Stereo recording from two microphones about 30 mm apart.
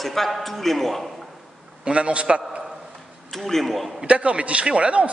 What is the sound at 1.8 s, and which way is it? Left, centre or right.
Speech, right.